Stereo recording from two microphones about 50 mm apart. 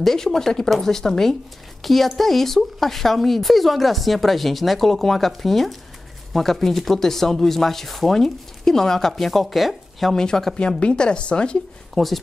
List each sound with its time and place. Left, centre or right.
0.0 s a woman's voice: centre
10.1 s a woman's voice: centre
11.9 s speech: centre